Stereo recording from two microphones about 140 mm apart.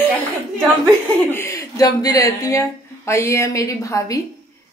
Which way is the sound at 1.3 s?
20° left (ahead or behind).